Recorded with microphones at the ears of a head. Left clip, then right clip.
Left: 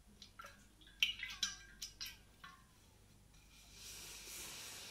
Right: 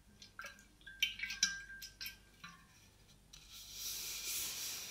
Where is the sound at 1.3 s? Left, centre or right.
Right.